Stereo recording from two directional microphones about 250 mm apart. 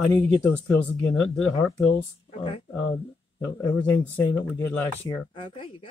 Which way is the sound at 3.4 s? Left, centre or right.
Centre.